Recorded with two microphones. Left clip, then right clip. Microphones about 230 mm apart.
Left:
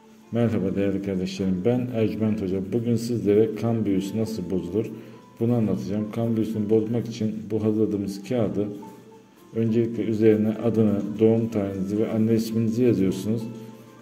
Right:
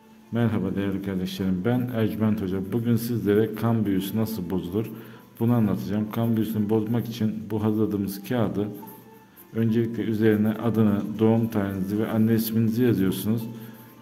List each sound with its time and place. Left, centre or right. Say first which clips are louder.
0.3 s a man's voice: left 2 dB; centre